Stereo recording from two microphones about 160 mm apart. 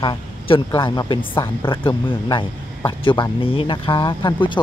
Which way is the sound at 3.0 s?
30° left (ahead or behind).